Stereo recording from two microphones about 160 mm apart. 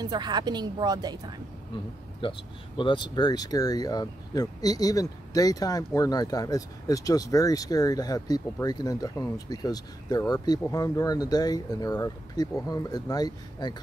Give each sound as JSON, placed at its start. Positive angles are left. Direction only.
{"t": 0.0, "sound": "a woman's voice", "side_deg": -25}
{"t": 2.2, "sound": "speech", "side_deg": 30}